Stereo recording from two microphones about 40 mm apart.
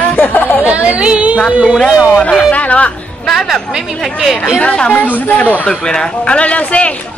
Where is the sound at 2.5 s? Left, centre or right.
Left.